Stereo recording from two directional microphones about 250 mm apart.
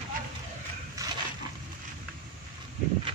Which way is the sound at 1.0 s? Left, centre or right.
Centre.